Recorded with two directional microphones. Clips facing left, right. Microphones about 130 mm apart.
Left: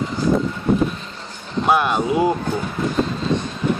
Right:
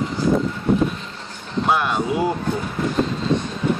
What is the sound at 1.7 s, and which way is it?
Speech, 15° left (ahead or behind).